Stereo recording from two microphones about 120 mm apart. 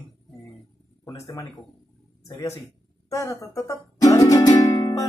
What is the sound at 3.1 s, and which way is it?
Music, 25° left (ahead or behind).